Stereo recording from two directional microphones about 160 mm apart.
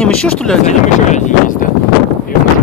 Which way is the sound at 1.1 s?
55° left (ahead or behind).